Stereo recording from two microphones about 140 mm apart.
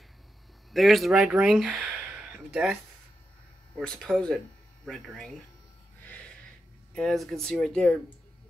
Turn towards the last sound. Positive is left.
turn(degrees=5)  # may be behind; listen again after turning